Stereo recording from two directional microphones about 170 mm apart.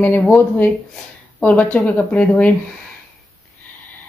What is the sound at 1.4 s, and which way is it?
Speech, 10° left (ahead or behind).